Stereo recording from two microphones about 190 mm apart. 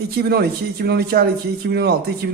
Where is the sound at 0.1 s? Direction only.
55° right (ahead or behind).